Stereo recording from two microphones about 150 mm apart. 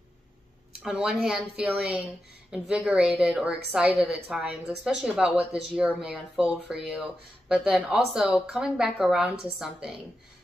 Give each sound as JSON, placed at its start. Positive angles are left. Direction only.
{"t": 0.8, "sound": "speech", "side_deg": -5}